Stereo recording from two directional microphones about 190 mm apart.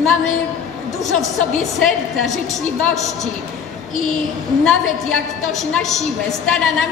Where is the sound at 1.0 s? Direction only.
Centre (ahead or behind).